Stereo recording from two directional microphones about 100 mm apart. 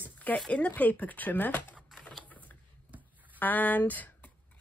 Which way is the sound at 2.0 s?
15° left (ahead or behind).